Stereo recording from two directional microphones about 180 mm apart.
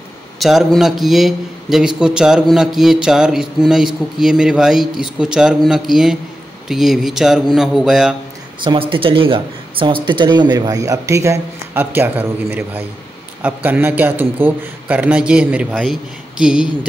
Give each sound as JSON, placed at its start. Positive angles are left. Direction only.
{"t": 0.4, "sound": "a man's voice", "side_deg": 0}
{"t": 8.5, "sound": "a man's voice", "side_deg": -30}